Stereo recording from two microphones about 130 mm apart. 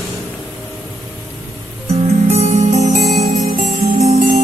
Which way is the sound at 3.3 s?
85° right.